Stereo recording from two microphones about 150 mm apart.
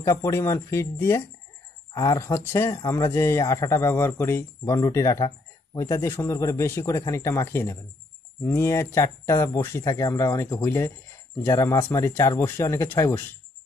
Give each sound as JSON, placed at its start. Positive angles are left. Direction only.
{"t": 0.0, "sound": "speech", "side_deg": 20}